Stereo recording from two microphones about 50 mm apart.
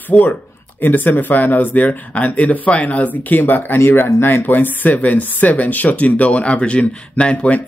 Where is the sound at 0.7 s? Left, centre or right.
Left.